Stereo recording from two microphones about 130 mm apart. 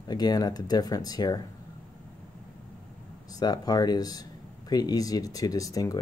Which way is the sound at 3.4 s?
30° left (ahead or behind).